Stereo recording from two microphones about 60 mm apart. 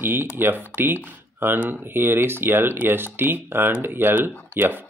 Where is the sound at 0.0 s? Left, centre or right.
Right.